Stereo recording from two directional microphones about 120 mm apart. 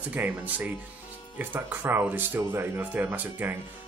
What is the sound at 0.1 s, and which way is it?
Speech, 15° right (ahead or behind).